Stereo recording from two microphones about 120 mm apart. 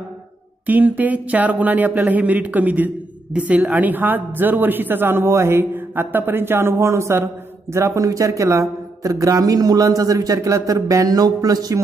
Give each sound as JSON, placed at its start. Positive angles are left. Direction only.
{"t": 0.7, "sound": "a woman's voice", "side_deg": -15}